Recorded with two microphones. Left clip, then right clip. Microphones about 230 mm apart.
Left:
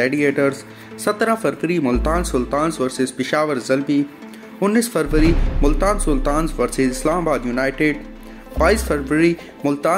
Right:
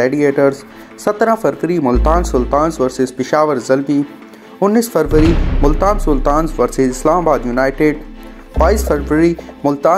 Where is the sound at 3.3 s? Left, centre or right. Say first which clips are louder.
Right 6 dB; centre.